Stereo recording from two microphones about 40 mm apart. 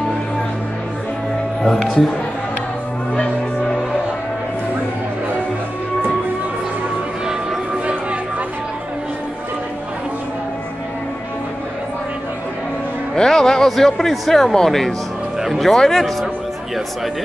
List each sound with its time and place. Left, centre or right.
1.6 s a man's voice: centre
3.2 s music: left
7.8 s a sound: right
13.1 s a man's voice: centre